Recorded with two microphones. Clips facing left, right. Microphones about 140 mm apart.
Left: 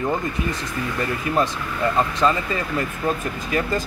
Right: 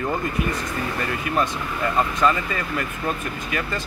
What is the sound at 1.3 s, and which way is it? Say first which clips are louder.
Speech: left 1 dB; 30° left (ahead or behind).